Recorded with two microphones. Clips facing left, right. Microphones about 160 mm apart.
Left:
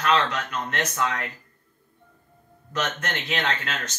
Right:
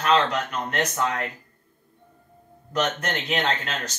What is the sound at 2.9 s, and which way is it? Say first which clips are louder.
Speech: right 3 dB; 35° right (ahead or behind).